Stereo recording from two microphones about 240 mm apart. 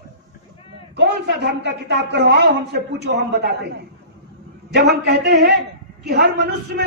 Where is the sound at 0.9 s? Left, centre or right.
Right.